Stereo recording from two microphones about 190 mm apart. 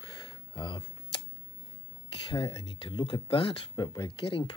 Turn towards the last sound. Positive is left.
turn(degrees=30)  # may be behind; listen again after turning